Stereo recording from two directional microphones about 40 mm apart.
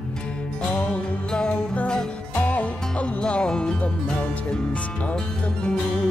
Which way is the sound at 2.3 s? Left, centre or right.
Left.